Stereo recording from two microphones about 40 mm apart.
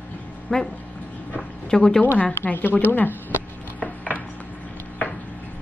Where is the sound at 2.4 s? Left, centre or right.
Left.